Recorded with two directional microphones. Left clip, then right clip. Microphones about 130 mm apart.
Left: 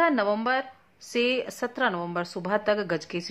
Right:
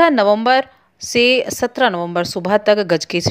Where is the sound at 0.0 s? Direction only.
45° right (ahead or behind).